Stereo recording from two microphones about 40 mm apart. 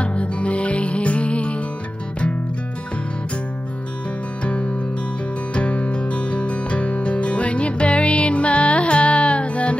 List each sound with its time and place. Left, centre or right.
0.0 s music: left
5.5 s music: left